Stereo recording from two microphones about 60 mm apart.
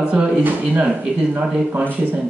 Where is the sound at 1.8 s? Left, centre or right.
Right.